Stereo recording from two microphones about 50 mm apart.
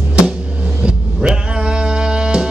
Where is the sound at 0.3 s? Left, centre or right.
Centre.